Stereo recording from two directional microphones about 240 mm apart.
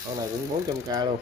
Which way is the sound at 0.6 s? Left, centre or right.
Centre.